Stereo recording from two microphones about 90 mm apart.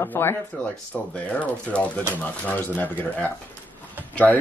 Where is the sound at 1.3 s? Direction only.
15° left (ahead or behind).